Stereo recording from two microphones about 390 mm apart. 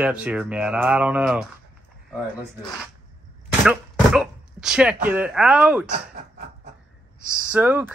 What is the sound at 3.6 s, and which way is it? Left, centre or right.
Chopping, centre.